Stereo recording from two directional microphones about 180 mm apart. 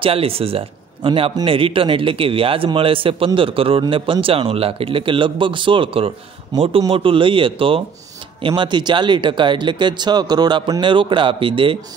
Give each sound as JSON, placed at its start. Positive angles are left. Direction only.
{"t": 0.0, "sound": "speech", "side_deg": -30}